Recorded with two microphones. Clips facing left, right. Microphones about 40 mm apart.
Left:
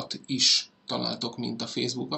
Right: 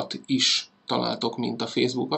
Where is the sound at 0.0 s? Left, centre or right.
Right.